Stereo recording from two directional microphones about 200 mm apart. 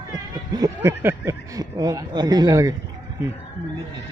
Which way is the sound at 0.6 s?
15° right (ahead or behind).